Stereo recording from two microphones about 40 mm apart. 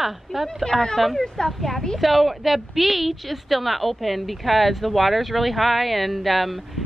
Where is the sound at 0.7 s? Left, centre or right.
Centre.